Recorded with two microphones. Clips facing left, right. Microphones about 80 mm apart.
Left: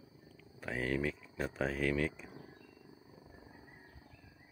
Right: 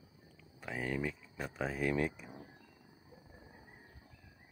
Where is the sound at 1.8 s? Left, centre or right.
Centre.